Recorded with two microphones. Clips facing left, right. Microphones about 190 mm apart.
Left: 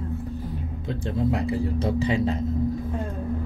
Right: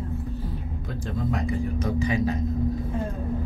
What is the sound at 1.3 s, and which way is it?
Speech, 30° left (ahead or behind).